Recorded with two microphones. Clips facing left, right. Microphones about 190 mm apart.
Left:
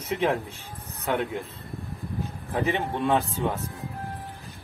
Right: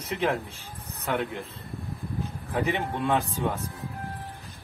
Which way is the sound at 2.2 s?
Centre (ahead or behind).